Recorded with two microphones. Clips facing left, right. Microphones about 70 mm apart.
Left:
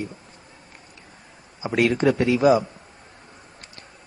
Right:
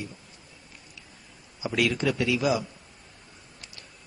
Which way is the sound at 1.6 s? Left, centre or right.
Left.